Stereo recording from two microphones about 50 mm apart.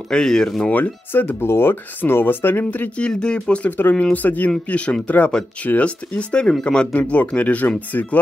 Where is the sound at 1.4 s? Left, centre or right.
Left.